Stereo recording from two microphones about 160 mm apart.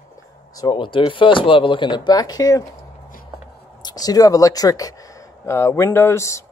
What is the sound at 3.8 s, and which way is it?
Speech, 25° left (ahead or behind).